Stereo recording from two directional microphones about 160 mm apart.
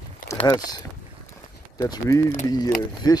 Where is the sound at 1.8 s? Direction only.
20° left (ahead or behind).